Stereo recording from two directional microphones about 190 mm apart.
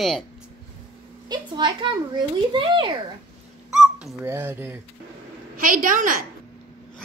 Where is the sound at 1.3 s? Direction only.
25° right (ahead or behind).